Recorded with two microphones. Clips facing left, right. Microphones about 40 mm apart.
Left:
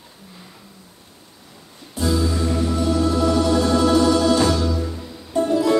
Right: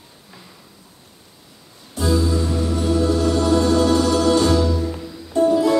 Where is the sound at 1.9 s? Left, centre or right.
Centre.